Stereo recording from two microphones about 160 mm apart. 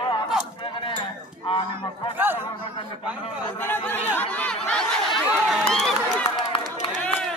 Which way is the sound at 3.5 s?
15° left (ahead or behind).